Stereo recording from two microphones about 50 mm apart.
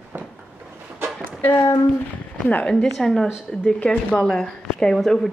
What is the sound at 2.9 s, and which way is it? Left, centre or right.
Speech, centre.